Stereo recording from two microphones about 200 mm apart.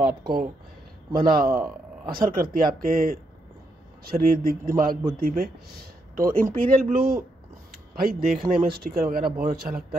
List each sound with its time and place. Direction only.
0.2 s speech: 45° right (ahead or behind)